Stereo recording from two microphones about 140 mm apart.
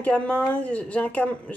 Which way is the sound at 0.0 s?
10° left (ahead or behind).